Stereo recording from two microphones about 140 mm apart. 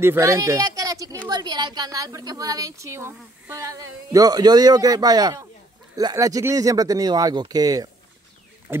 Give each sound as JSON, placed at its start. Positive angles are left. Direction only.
{"t": 0.0, "sound": "a woman's voice", "side_deg": -20}